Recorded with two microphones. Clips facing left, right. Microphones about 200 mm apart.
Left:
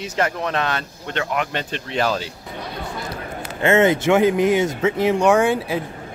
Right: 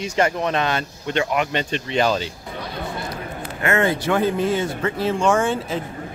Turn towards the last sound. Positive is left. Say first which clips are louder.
# left 3 dB
turn(degrees=10)  # may be behind; listen again after turning